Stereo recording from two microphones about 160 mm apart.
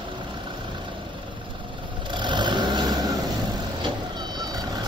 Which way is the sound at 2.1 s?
30° right (ahead or behind).